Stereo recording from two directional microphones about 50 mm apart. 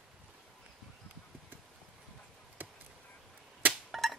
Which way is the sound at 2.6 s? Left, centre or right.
Right.